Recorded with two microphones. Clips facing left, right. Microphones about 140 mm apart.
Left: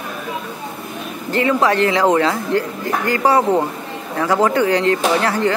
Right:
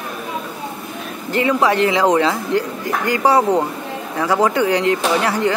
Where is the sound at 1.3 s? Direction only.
15° right (ahead or behind).